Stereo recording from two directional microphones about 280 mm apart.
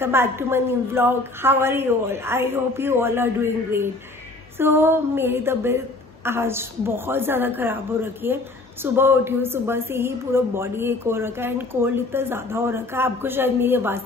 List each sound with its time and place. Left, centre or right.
0.0 s a woman's voice: centre